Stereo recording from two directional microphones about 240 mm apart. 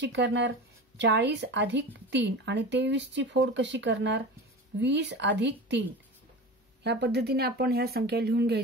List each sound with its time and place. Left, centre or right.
0.0 s a woman's voice: right